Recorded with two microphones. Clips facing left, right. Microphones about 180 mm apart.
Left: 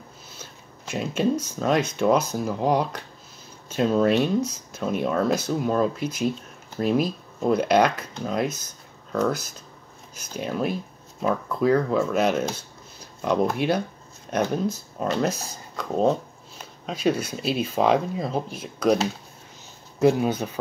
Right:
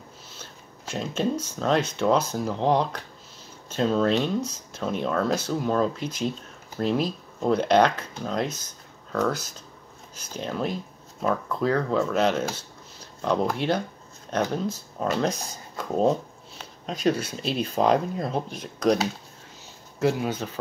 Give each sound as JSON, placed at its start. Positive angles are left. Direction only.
{"t": 0.4, "sound": "a sound", "side_deg": 10}
{"t": 1.6, "sound": "speech", "side_deg": 10}
{"t": 20.0, "sound": "speech", "side_deg": 20}